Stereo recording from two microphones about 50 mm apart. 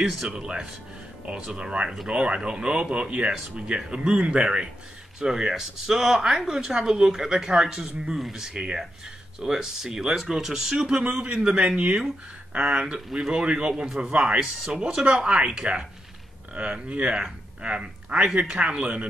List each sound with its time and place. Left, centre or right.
0.0 s speech: centre
5.2 s speech: centre
12.6 s speech: right
13.8 s speech: centre